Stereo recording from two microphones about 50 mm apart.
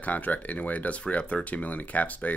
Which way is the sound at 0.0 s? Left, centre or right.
Left.